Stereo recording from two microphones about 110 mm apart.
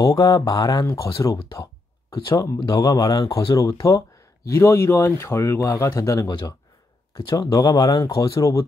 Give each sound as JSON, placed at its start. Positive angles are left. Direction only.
{"t": 0.0, "sound": "speech", "side_deg": 35}